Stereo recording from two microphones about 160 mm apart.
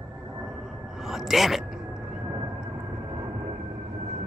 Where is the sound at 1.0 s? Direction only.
Centre (ahead or behind).